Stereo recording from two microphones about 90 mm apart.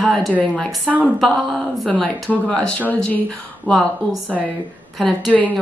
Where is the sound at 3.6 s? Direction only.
5° left (ahead or behind).